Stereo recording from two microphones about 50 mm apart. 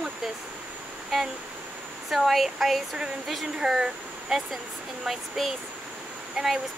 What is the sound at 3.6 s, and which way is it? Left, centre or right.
Speech, centre.